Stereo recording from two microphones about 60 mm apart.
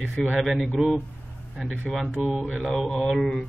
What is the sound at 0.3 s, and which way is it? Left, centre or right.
Mantra, centre.